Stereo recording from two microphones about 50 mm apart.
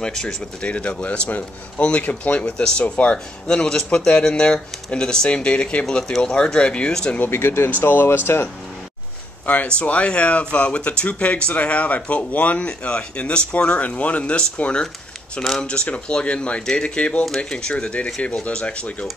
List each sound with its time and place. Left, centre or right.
0.0 s speech: centre
3.4 s speech: centre
7.2 s speech: left
7.8 s speech: left
9.7 s speech: left